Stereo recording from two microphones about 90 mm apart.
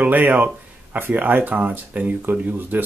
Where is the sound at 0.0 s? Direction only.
20° right (ahead or behind).